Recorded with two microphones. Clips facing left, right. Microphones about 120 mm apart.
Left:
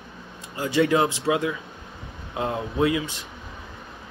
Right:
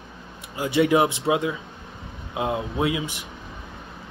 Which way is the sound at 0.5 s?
15° right (ahead or behind).